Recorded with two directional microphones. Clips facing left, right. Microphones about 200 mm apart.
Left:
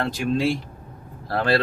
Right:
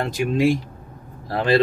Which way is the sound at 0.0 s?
15° right (ahead or behind).